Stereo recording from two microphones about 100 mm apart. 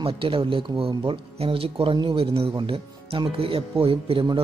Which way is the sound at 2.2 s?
70° right (ahead or behind).